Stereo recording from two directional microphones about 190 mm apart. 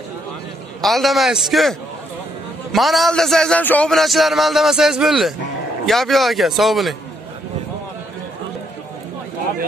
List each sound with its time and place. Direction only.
0.7 s a man's voice: centre (ahead or behind)